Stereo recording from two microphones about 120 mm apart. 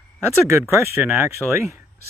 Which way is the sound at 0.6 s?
20° right (ahead or behind).